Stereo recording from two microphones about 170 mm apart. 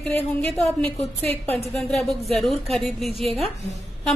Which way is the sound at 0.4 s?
5° left (ahead or behind).